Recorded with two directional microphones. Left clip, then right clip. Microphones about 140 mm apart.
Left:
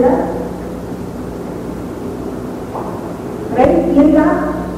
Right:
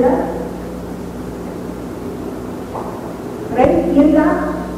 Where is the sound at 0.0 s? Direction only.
35° right (ahead or behind).